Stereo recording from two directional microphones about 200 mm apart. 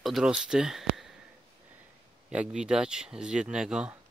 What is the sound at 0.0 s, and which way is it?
Speech, centre (ahead or behind).